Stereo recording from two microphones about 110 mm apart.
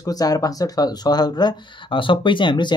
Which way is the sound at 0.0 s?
35° left (ahead or behind).